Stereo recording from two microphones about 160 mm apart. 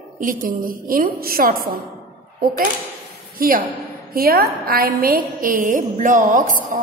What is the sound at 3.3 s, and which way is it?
A woman's voice, 65° right (ahead or behind).